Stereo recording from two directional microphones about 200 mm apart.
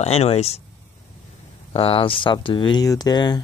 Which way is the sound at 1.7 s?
30° left (ahead or behind).